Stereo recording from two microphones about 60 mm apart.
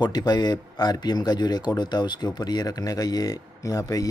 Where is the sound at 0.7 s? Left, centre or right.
Left.